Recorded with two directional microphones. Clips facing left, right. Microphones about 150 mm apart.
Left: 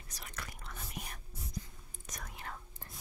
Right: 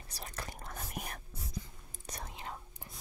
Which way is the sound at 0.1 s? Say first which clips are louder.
Right 3 dB; 35° right (ahead or behind).